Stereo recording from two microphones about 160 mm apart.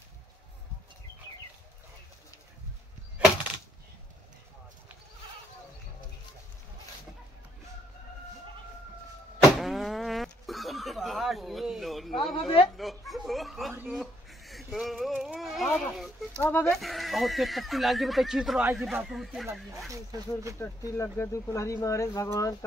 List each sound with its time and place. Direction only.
9.4 s fart: centre (ahead or behind)
12.7 s a sound: centre (ahead or behind)
16.4 s speech: 10° left (ahead or behind)
16.7 s speech: centre (ahead or behind)
19.9 s speech: 20° right (ahead or behind)
20.5 s speech: 15° left (ahead or behind)